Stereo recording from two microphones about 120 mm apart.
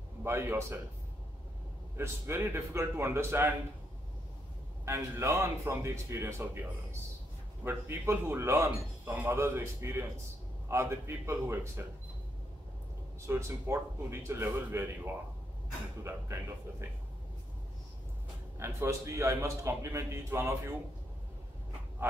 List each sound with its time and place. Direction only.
0.2 s a man's voice: 20° right (ahead or behind)
2.0 s a man's voice: 20° right (ahead or behind)
4.8 s a man's voice: 25° right (ahead or behind)
7.6 s a man's voice: 20° right (ahead or behind)
13.3 s a man's voice: 20° right (ahead or behind)
16.0 s a man's voice: 20° right (ahead or behind)
18.6 s a man's voice: 25° right (ahead or behind)